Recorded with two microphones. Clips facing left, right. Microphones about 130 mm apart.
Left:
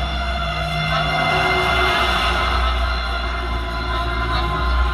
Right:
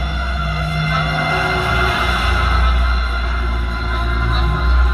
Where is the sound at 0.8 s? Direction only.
15° left (ahead or behind).